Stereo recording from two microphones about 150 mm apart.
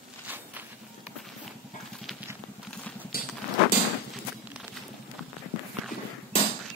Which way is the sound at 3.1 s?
85° left.